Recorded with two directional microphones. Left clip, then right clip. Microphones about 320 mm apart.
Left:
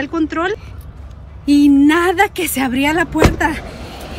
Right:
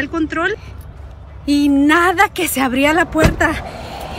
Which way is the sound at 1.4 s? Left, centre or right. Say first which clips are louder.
Left 3 dB; centre.